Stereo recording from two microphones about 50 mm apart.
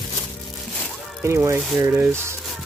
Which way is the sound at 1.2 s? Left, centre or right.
Right.